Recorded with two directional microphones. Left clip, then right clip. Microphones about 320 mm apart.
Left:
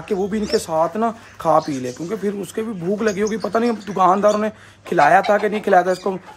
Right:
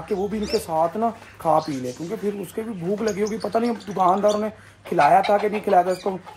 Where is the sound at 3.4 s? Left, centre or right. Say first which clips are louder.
Left 3 dB; left.